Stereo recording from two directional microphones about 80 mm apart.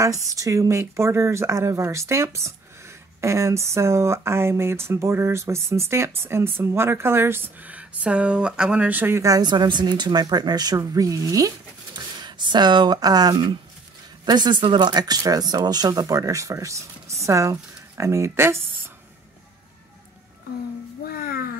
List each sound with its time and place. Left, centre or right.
0.0 s speech: right
9.1 s speech: right
9.4 s speech: right
11.9 s speech: right